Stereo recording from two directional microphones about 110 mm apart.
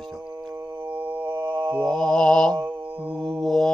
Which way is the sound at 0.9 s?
20° right (ahead or behind).